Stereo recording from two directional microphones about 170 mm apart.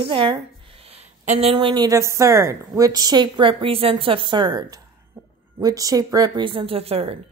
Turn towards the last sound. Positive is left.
turn(degrees=-35)  # may be behind; listen again after turning